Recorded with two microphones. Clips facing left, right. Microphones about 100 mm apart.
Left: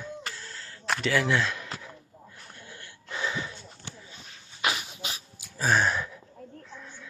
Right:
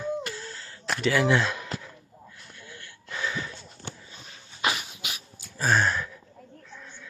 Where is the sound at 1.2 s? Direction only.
20° right (ahead or behind).